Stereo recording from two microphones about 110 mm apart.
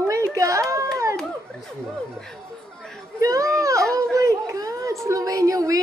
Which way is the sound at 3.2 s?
30° right (ahead or behind).